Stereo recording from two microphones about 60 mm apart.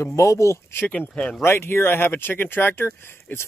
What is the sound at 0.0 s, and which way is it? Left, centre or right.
Speech, left.